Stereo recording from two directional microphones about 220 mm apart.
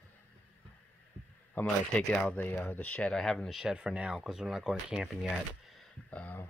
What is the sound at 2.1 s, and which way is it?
Speech, 10° left (ahead or behind).